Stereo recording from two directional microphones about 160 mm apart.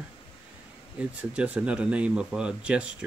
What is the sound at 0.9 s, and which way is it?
Speech, 5° right (ahead or behind).